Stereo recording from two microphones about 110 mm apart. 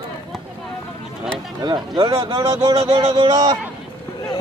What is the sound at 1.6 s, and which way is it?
A man's voice, 40° right (ahead or behind).